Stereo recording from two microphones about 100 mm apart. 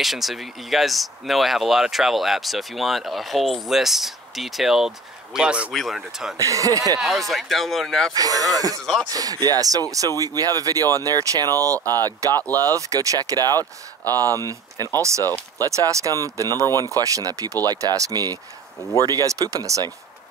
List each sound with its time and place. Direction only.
0.0 s speech: centre (ahead or behind)
5.7 s speech: centre (ahead or behind)
6.3 s speech: 35° right (ahead or behind)
7.0 s speech: centre (ahead or behind)
8.1 s speech: 40° right (ahead or behind)
16.6 s speech: 30° left (ahead or behind)
16.9 s speech: 35° right (ahead or behind)